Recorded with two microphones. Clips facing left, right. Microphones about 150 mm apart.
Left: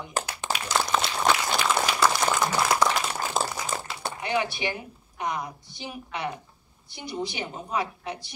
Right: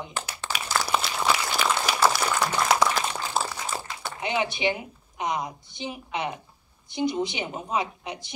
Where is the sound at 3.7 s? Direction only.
40° left (ahead or behind).